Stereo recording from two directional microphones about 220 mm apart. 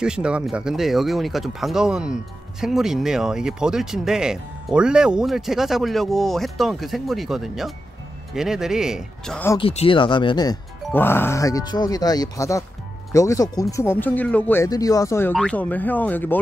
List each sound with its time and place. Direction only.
0.0 s speech: 5° right (ahead or behind)
9.6 s speech: 25° left (ahead or behind); by 16.3 s 10° left (ahead or behind)